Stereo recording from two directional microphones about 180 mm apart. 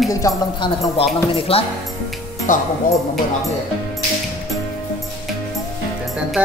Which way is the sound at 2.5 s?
45° left (ahead or behind).